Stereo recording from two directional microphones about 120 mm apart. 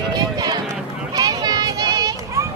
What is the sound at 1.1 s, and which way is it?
Children playing, 30° right (ahead or behind).